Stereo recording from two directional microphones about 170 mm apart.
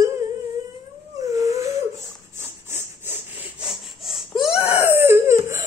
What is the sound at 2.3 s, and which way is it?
Sawing, 15° right (ahead or behind).